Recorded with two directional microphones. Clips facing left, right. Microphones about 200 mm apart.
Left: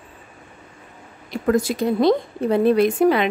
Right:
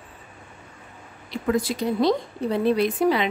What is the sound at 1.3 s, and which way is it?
Speech, 45° left (ahead or behind).